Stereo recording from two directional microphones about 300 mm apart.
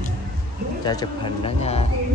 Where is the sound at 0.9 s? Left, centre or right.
Centre.